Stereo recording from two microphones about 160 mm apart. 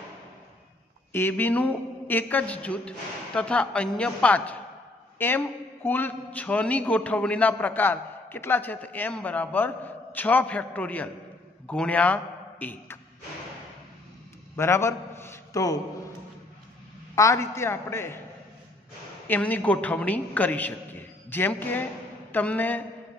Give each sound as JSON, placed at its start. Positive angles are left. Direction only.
{"t": 1.1, "sound": "a man's voice", "side_deg": 15}
{"t": 14.6, "sound": "a man's voice", "side_deg": 15}
{"t": 17.1, "sound": "a man's voice", "side_deg": 20}
{"t": 19.2, "sound": "a man's voice", "side_deg": 10}